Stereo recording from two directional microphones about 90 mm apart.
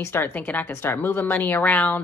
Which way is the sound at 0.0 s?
25° left (ahead or behind).